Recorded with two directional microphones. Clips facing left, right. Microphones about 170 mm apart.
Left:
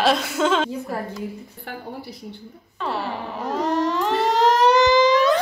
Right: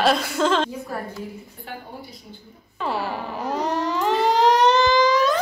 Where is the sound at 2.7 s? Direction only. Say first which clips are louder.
Right 1 dB; 5° right (ahead or behind).